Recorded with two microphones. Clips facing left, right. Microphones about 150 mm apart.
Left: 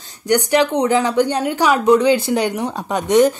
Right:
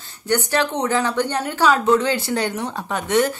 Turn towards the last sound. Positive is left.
turn(degrees=15)  # may be behind; listen again after turning